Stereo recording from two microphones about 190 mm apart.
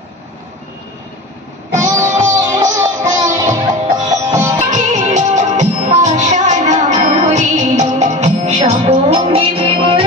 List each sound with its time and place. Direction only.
1.7 s music: 15° right (ahead or behind)
4.6 s music: 40° right (ahead or behind)